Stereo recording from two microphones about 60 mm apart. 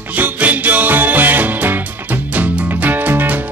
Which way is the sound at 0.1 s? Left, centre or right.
Right.